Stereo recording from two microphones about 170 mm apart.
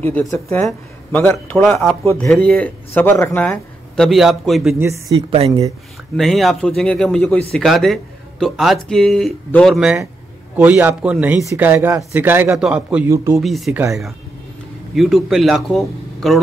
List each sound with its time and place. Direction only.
0.0 s a man's voice: 10° left (ahead or behind)
0.7 s a man's voice: 5° left (ahead or behind)
4.7 s a man's voice: 15° right (ahead or behind)
5.1 s a woman's voice: 30° right (ahead or behind)
6.1 s a man's voice: centre (ahead or behind); by 13.4 s 15° right (ahead or behind)
13.4 s speech: centre (ahead or behind)
15.0 s speech: centre (ahead or behind)